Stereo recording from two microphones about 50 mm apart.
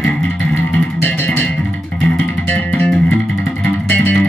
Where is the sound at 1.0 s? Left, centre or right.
Left.